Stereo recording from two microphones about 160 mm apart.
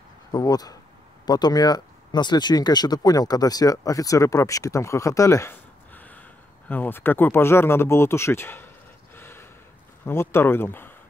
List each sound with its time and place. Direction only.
0.3 s speech: 25° left (ahead or behind)
9.1 s gasp: 15° left (ahead or behind)
10.0 s speech: 15° left (ahead or behind)